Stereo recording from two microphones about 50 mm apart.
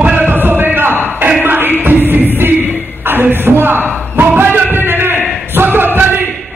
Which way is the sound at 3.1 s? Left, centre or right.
Right.